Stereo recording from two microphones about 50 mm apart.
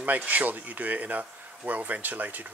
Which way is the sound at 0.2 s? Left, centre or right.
Right.